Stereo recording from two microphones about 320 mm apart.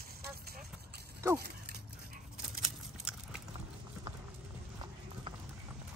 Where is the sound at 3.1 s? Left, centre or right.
Centre.